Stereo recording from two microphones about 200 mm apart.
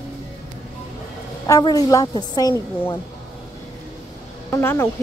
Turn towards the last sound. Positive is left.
turn(degrees=10)  # may be behind; listen again after turning